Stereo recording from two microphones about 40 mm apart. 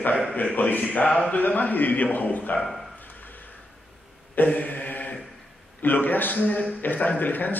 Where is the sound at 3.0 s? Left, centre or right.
Left.